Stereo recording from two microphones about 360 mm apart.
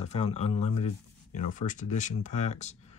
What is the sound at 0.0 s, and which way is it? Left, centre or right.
Speech, centre.